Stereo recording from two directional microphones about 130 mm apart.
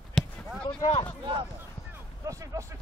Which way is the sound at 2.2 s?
25° right (ahead or behind).